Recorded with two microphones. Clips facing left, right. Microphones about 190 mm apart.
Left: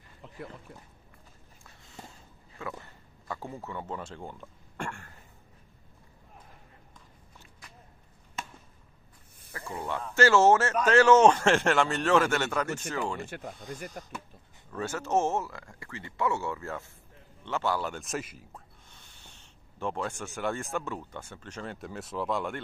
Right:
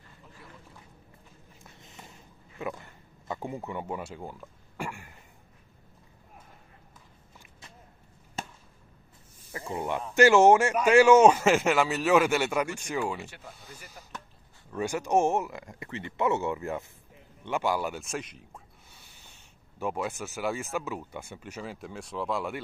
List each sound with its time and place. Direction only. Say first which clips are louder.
1.6 s a sound: left 2 dB; 20° right (ahead or behind)
2.6 s speech: right 4 dB; 20° right (ahead or behind)
8.4 s a sound: right 2 dB; 35° right (ahead or behind)
9.5 s speech: right 3 dB; 15° right (ahead or behind)
13.2 s speech: left 5 dB; 50° left (ahead or behind)
14.8 s speech: right 3 dB; 15° right (ahead or behind)
18.0 s speech: left 1 dB; 5° left (ahead or behind)
18.9 s a sound: right 1 dB; 10° right (ahead or behind)
19.8 s speech: right 1 dB; 5° right (ahead or behind)